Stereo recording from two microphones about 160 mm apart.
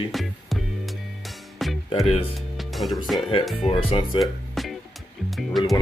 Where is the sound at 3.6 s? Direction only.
35° left (ahead or behind).